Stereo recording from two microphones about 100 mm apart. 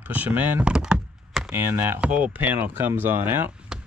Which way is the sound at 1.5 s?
20° right (ahead or behind).